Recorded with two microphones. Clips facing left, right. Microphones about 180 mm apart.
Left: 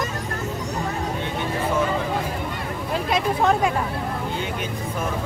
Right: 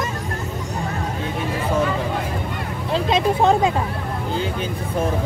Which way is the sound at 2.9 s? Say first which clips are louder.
Right 4 dB; 25° right (ahead or behind).